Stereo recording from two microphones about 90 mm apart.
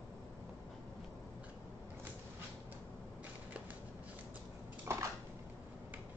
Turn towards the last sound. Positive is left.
turn(degrees=-30)  # may be behind; listen again after turning